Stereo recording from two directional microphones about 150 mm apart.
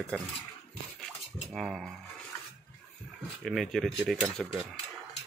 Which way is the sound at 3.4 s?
Centre (ahead or behind).